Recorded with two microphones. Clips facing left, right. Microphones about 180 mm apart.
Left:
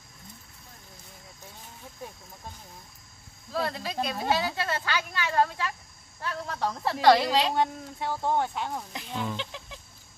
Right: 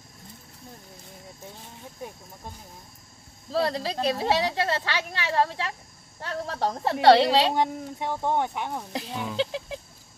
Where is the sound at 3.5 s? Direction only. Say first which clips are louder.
Right 4 dB; 35° right (ahead or behind).